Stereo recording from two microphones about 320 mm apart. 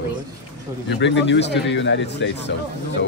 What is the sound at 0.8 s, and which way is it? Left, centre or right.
Speech, left.